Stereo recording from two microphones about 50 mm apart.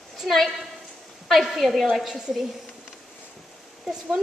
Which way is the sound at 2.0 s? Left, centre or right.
Centre.